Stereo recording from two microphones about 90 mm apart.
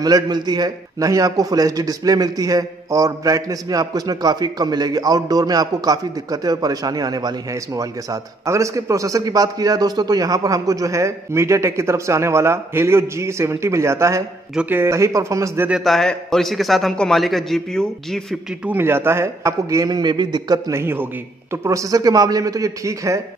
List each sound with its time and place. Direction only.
0.0 s a man's voice: 50° right (ahead or behind); by 15.6 s 35° right (ahead or behind)
15.8 s a man's voice: 5° left (ahead or behind)
18.7 s a man's voice: 25° right (ahead or behind)
19.9 s a man's voice: 55° right (ahead or behind)
20.7 s a man's voice: 25° right (ahead or behind)
21.6 s a man's voice: 40° right (ahead or behind)